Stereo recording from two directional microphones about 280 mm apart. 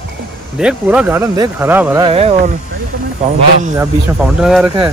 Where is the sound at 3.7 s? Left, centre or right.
Centre.